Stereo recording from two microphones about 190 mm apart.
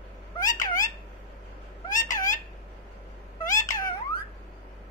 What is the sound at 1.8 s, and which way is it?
Cat, 40° left (ahead or behind).